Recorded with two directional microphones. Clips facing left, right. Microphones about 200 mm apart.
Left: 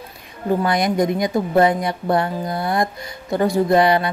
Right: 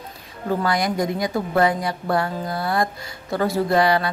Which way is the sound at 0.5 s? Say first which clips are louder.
Left 3 dB; 20° left (ahead or behind).